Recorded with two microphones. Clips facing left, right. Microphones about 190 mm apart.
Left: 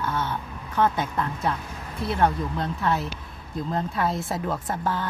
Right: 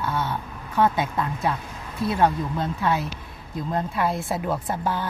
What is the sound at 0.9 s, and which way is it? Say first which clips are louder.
Speech: right 2 dB; 15° right (ahead or behind).